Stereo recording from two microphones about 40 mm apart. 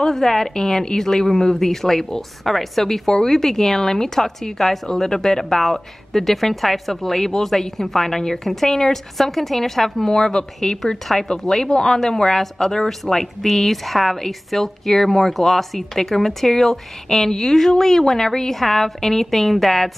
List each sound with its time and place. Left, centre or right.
0.0 s a woman's voice: centre